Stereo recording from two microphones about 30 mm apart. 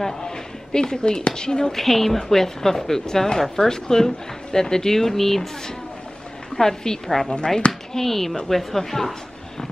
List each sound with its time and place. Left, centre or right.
0.9 s speech: left
1.7 s speech: centre
6.5 s speech: centre
7.2 s speech: left
7.9 s speech: centre